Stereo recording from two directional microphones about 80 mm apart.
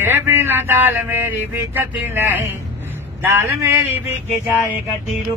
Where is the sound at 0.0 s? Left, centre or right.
Right.